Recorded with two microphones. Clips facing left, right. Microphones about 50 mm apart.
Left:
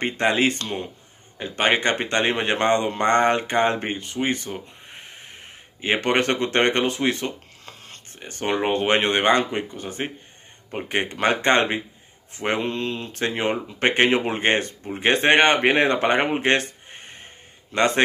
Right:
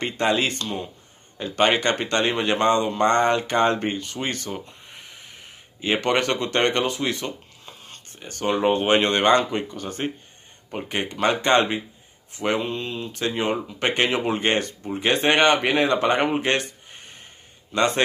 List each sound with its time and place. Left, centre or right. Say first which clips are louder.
0.0 s speech: left 2 dB; left
1.4 s speech: right 1 dB; left
4.8 s speech: left 2 dB; left
8.5 s speech: right 1 dB; left
9.0 s speech: right 1 dB; left
10.9 s speech: left 1 dB; left
12.6 s speech: left 2 dB; left
13.1 s speech: right 1 dB; left